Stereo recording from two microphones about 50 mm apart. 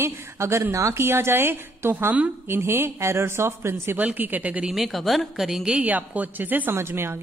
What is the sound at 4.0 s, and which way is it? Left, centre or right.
Speech, right.